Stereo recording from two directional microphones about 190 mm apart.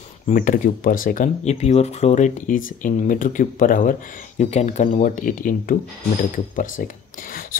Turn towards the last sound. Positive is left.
turn(degrees=45)  # may be behind; listen again after turning